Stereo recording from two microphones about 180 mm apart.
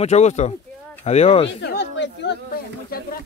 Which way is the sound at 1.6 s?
75° left (ahead or behind).